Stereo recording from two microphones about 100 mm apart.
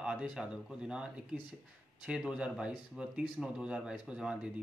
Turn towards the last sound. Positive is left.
turn(degrees=-10)  # may be behind; listen again after turning